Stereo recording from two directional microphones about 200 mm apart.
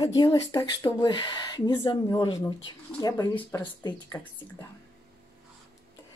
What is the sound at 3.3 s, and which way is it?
Speech, 10° left (ahead or behind).